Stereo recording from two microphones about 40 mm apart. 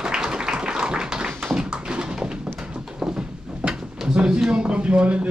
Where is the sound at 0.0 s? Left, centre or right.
Centre.